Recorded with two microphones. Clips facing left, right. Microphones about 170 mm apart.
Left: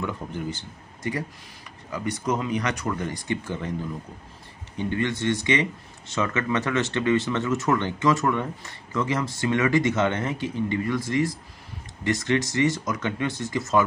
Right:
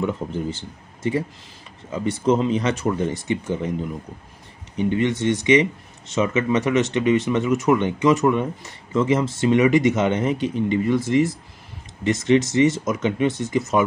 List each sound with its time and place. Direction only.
0.0 s speech: 25° right (ahead or behind)